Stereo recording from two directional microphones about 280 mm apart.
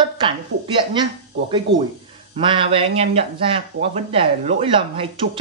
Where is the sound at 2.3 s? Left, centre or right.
Centre.